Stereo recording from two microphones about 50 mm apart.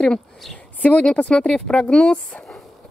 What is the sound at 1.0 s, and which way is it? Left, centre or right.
Speech, left.